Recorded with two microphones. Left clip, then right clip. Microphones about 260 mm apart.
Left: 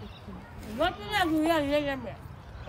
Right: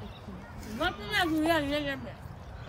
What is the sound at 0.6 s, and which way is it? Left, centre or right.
Speech, left.